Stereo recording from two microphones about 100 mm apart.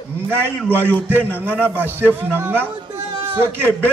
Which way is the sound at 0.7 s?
15° left (ahead or behind).